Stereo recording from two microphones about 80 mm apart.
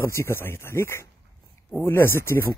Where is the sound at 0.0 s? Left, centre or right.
Left.